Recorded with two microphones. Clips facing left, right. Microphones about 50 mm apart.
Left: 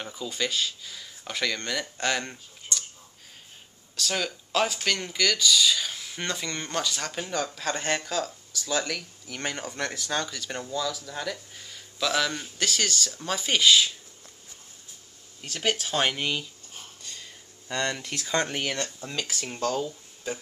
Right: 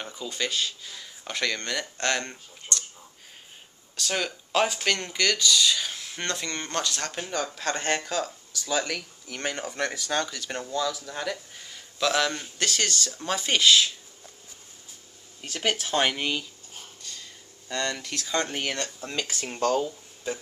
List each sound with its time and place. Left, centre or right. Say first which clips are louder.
0.0 s speech: left 1 dB; centre
3.9 s speech: even; centre
15.4 s speech: even; centre
15.8 s speech: right 1 dB; centre
17.0 s a sound: even; centre
18.0 s speech: left 1 dB; centre
18.6 s speech: even; centre